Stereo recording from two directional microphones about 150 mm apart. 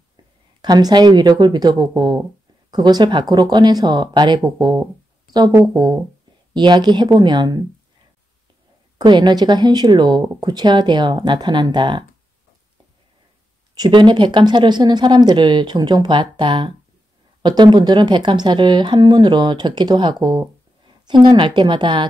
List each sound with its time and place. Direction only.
0.6 s speech: 25° right (ahead or behind)
8.9 s speech: 30° right (ahead or behind)
13.7 s speech: 30° right (ahead or behind)